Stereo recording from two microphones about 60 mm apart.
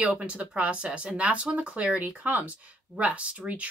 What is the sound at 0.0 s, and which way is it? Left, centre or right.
Speech, right.